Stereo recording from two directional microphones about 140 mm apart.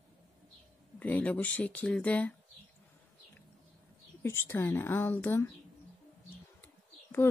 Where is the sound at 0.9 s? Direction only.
10° left (ahead or behind).